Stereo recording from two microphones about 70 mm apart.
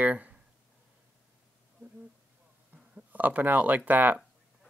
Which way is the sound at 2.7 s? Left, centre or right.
Right.